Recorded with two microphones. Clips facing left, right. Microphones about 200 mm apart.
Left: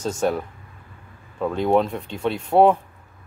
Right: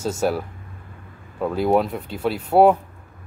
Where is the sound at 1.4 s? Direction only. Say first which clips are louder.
Even; 5° right (ahead or behind).